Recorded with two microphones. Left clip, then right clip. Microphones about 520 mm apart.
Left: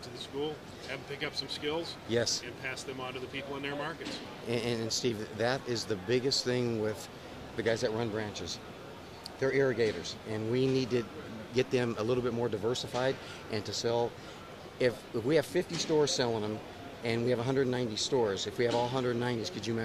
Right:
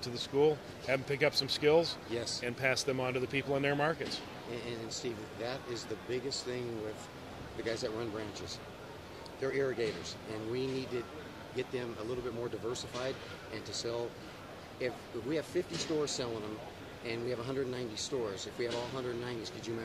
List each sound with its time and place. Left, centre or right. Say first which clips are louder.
0.0 s speech: right 7 dB; right
2.1 s speech: left 7 dB; left
2.4 s speech: right 7 dB; right
4.5 s speech: left 10 dB; left
7.6 s speech: left 6 dB; left